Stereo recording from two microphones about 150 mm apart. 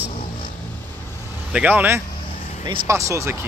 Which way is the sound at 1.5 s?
10° right (ahead or behind).